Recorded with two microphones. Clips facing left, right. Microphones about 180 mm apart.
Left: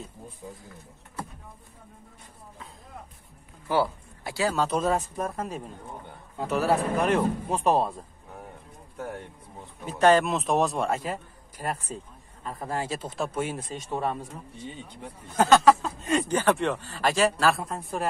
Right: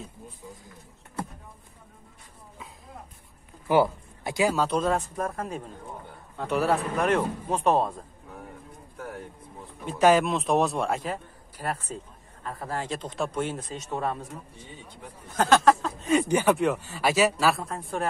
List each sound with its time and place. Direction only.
3.6 s speech: 15° right (ahead or behind)
4.6 s speech: 5° left (ahead or behind)
9.8 s a man's voice: 5° right (ahead or behind)
11.6 s speech: 15° left (ahead or behind)
15.3 s speech: centre (ahead or behind)
16.3 s speech: 10° right (ahead or behind)